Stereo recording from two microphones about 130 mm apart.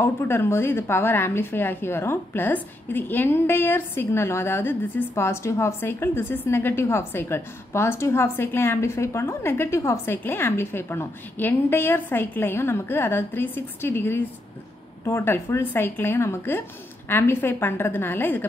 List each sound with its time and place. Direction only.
0.0 s a woman's voice: 20° left (ahead or behind)